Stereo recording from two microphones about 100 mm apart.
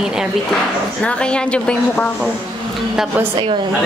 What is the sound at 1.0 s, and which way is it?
A woman's voice, 10° left (ahead or behind).